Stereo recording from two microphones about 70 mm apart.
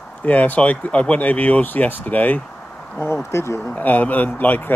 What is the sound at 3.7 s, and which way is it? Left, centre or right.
Speech, left.